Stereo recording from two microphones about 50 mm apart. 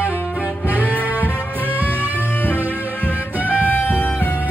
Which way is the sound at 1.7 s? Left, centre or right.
Right.